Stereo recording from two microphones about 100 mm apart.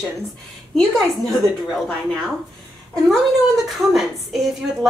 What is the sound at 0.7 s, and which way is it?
Speech, centre (ahead or behind).